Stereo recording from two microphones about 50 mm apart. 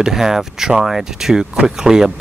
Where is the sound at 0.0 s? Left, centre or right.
Centre.